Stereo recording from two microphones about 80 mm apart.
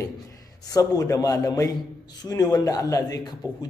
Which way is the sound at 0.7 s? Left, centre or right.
Left.